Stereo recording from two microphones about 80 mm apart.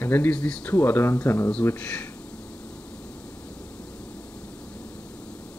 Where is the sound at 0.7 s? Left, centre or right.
Left.